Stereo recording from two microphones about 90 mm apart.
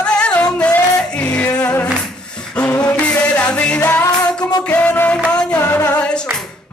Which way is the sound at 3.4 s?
15° left (ahead or behind).